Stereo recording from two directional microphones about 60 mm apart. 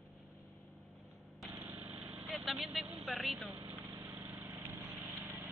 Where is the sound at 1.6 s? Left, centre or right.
Right.